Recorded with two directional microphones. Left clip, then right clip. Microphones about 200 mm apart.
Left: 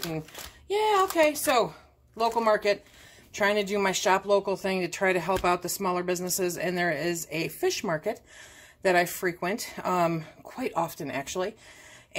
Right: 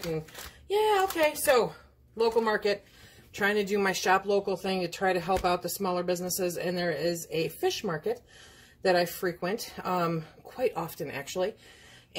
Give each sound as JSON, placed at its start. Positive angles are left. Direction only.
{"t": 0.7, "sound": "speech", "side_deg": 40}